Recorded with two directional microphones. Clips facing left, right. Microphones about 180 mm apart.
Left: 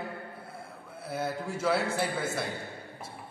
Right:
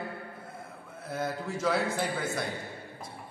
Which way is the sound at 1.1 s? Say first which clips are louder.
Even; 10° left (ahead or behind).